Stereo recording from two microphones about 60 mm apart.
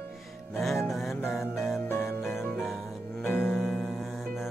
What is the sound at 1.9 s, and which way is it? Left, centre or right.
Music, left.